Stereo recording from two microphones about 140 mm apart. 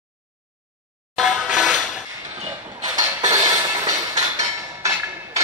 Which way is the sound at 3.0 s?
20° right (ahead or behind).